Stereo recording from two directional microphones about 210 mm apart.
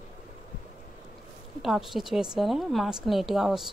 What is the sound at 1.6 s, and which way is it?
A woman's voice, centre (ahead or behind).